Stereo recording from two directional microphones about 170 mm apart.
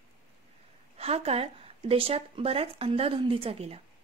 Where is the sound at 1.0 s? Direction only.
35° right (ahead or behind).